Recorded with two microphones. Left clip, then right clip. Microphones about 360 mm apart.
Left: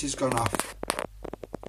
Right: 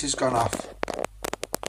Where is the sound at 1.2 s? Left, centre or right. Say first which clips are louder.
Right 7 dB; right.